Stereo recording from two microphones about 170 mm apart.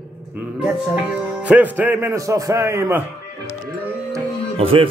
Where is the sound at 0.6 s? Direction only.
5° right (ahead or behind).